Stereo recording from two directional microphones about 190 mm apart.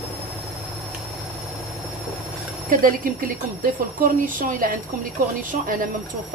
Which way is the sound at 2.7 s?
45° right (ahead or behind).